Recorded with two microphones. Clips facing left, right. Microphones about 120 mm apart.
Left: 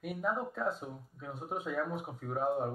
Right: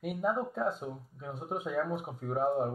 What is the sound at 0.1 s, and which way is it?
Speech, 5° right (ahead or behind).